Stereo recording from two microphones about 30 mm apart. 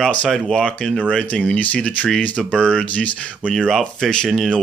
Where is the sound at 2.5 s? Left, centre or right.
Left.